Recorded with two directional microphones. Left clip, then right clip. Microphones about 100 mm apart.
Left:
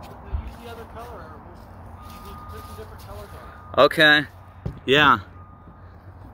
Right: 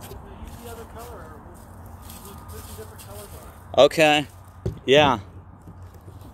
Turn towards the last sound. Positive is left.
turn(degrees=45)  # may be behind; listen again after turning